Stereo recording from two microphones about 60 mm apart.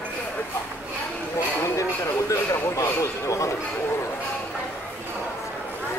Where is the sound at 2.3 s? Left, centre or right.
Left.